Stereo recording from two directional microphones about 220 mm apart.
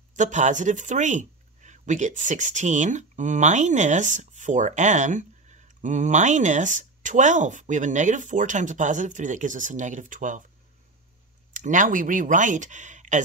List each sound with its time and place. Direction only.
0.1 s speech: 35° right (ahead or behind)
11.5 s speech: 35° right (ahead or behind)